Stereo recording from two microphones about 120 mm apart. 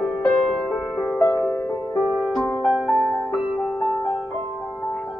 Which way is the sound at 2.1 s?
Centre (ahead or behind).